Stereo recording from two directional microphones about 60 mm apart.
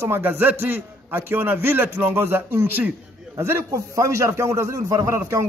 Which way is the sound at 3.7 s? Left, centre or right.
Right.